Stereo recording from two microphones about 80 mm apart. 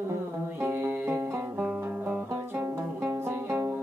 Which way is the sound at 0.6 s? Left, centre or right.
Right.